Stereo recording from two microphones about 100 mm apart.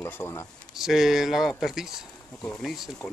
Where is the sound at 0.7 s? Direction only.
5° right (ahead or behind).